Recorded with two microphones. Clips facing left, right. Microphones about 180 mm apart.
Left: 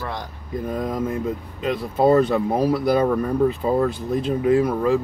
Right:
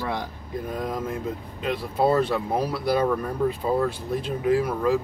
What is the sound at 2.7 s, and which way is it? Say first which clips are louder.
Speech: left 3 dB; 40° left (ahead or behind).